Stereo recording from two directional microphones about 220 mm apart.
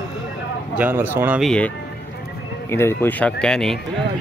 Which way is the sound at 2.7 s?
10° left (ahead or behind).